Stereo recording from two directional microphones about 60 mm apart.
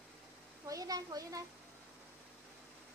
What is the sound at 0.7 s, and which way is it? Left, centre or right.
Speech, right.